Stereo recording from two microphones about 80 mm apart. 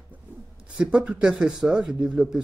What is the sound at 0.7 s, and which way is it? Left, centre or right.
Speech, centre.